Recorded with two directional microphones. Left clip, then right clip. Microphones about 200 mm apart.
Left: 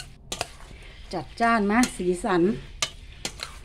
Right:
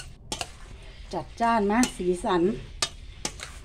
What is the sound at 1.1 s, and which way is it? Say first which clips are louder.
Speech: left 1 dB; 25° left (ahead or behind).